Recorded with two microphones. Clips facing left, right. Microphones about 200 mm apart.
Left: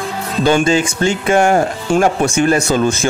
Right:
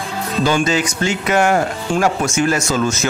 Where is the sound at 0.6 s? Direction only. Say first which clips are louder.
Left 4 dB; 30° left (ahead or behind).